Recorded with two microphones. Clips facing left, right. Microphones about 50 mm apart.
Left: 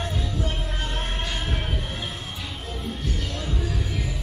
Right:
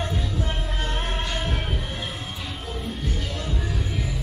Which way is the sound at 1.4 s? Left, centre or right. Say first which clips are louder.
Right 1 dB; centre.